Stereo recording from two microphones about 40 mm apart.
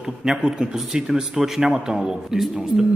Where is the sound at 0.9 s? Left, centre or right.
Centre.